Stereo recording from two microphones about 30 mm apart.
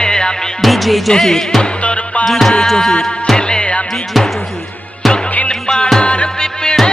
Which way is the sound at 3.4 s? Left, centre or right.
Left.